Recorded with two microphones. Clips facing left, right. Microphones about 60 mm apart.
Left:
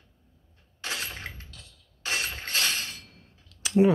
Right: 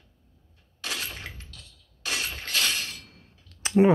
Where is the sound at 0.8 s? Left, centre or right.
Left.